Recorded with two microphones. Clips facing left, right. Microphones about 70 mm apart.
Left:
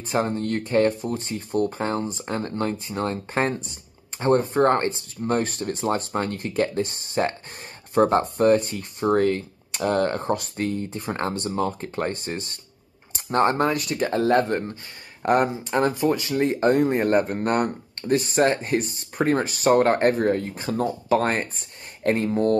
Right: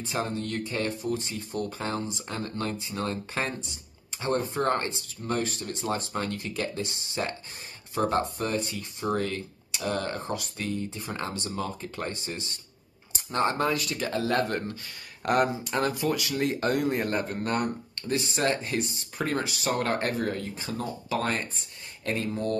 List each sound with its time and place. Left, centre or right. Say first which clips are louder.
0.0 s speech: left 6 dB; left
8.2 s speech: left 10 dB; left
13.8 s speech: left 7 dB; left